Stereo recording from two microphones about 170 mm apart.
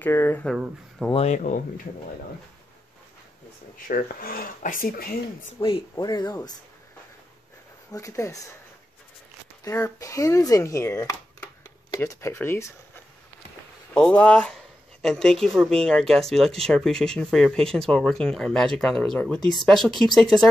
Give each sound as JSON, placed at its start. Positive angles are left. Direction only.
{"t": 0.0, "sound": "speech", "side_deg": 15}
{"t": 1.1, "sound": "speech", "side_deg": 40}
{"t": 3.8, "sound": "speech", "side_deg": 55}
{"t": 5.6, "sound": "speech", "side_deg": 30}
{"t": 7.9, "sound": "speech", "side_deg": 20}
{"t": 9.7, "sound": "speech", "side_deg": 15}
{"t": 13.9, "sound": "speech", "side_deg": 5}